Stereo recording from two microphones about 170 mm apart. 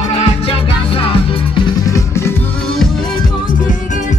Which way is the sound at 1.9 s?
15° left (ahead or behind).